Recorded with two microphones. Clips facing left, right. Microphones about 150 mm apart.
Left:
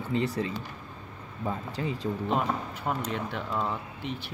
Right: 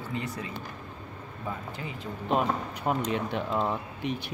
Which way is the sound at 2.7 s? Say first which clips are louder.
Right 3 dB; 20° right (ahead or behind).